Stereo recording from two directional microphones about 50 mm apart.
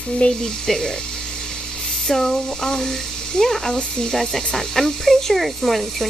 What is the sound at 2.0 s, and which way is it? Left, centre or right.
Speech, centre.